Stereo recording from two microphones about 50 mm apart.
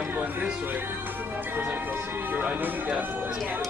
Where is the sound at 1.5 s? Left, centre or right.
Right.